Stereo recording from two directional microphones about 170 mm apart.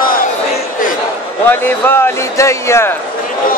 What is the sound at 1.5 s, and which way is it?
Speech, 15° left (ahead or behind).